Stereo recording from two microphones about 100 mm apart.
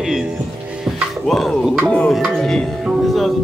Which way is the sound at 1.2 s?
Centre (ahead or behind).